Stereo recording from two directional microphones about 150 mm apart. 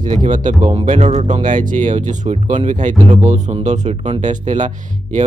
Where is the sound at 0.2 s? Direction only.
55° right (ahead or behind).